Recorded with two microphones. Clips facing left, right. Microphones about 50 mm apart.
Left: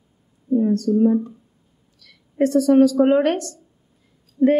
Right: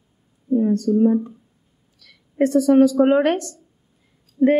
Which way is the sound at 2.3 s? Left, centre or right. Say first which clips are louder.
Even; right.